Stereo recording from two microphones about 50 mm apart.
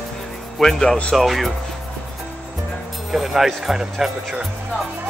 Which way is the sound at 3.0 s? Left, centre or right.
Centre.